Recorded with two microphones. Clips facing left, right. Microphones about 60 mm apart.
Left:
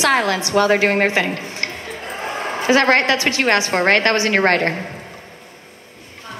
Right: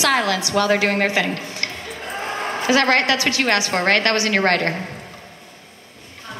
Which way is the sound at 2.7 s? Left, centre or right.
Left.